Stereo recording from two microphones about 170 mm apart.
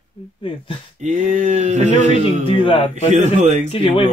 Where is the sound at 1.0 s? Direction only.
45° right (ahead or behind).